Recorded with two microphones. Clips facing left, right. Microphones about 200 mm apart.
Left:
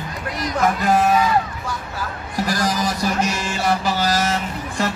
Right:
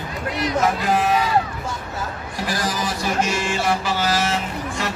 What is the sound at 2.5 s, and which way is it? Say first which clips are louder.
Music: left 2 dB; 40° left (ahead or behind).